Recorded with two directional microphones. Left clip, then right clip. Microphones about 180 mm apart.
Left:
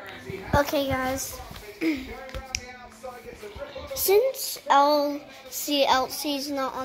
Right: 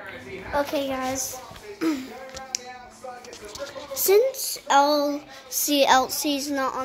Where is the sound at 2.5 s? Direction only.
15° right (ahead or behind).